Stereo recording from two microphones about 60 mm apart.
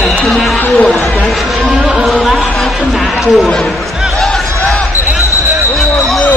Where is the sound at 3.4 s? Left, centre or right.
Centre.